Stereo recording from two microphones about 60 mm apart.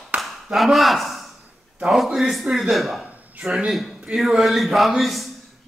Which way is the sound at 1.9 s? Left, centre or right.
Centre.